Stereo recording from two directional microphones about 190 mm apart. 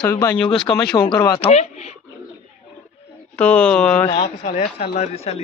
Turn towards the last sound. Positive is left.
turn(degrees=35)  # may be behind; listen again after turning